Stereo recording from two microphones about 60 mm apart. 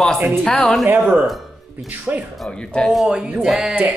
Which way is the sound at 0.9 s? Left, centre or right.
Right.